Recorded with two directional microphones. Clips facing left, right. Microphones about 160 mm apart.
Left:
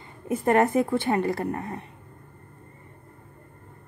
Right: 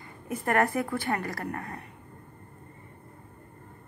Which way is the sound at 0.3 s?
25° left (ahead or behind).